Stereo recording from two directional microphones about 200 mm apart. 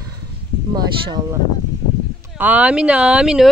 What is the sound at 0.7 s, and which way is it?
Speech, 20° right (ahead or behind).